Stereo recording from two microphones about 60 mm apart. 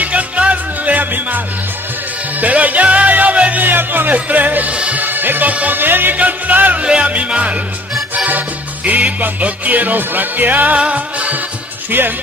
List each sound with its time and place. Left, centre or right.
0.0 s music: right
2.4 s music: right
5.0 s music: right